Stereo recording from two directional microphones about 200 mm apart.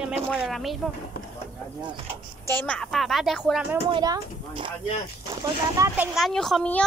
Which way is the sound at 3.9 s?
20° right (ahead or behind).